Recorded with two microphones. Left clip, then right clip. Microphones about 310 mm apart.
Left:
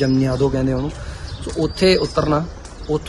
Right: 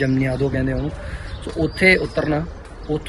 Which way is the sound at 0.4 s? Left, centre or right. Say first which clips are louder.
Left 3 dB; centre.